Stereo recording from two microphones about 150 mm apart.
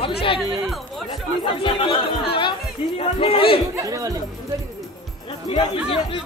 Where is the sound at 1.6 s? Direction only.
35° left (ahead or behind).